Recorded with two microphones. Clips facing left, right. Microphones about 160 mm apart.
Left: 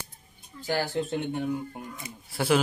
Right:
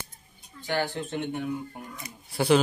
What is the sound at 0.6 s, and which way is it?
Speech, 35° left (ahead or behind).